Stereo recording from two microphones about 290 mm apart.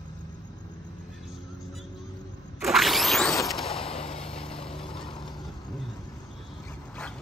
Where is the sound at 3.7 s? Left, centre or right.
Centre.